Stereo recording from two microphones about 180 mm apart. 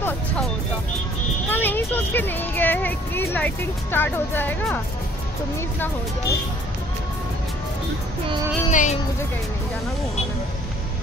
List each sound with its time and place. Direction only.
1.5 s speech: 10° left (ahead or behind)
8.6 s speech: 45° left (ahead or behind)